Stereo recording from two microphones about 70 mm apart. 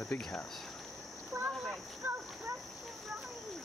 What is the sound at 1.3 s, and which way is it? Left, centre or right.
Speech, right.